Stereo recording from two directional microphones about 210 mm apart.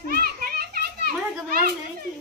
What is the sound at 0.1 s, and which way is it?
Children playing, 45° right (ahead or behind).